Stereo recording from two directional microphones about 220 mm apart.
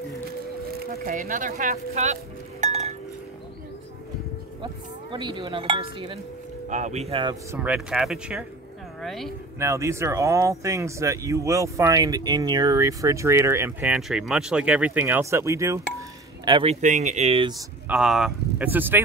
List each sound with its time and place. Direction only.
0.9 s speech: 40° right (ahead or behind)
2.6 s chink: 30° right (ahead or behind)
5.1 s speech: 20° right (ahead or behind)
7.5 s speech: 5° right (ahead or behind)
9.6 s speech: 15° right (ahead or behind)
16.8 s speech: 35° right (ahead or behind)
17.8 s speech: 5° right (ahead or behind)